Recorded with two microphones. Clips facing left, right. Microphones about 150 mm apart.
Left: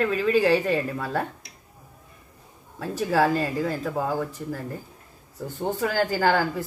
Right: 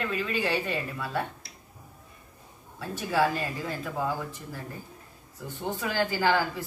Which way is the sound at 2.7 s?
40° left (ahead or behind).